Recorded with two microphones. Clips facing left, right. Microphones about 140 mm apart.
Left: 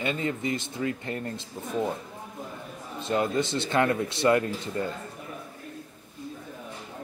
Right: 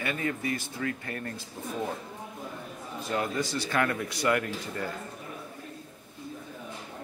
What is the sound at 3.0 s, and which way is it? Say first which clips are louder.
Speech: left 4 dB; 25° left (ahead or behind).